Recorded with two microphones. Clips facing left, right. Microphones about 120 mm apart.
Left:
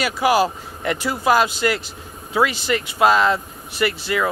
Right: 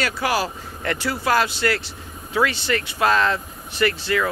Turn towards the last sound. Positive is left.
turn(degrees=10)  # may be behind; listen again after turning